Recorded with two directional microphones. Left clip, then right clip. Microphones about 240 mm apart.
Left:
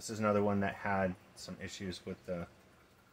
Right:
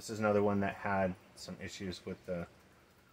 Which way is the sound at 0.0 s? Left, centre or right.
Centre.